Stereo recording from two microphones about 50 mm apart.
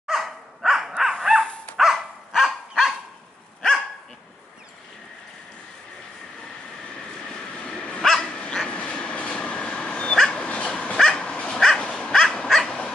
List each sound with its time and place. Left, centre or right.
0.0 s dog: centre
1.4 s dog: left
1.8 s dog: centre
6.9 s dog: centre
8.9 s train: centre
9.4 s dog: centre